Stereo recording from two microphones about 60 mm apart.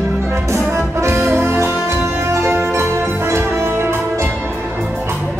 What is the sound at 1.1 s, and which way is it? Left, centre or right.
Music, right.